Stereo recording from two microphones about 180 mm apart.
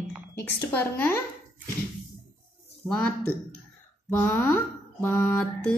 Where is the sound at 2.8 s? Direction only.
5° left (ahead or behind).